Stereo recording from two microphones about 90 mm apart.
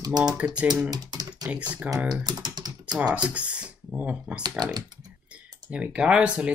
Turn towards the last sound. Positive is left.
turn(degrees=-15)  # may be behind; listen again after turning